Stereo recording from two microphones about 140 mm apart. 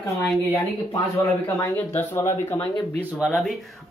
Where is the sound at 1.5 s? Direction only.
20° left (ahead or behind).